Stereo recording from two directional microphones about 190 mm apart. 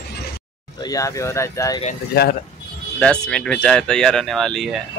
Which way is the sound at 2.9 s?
5° left (ahead or behind).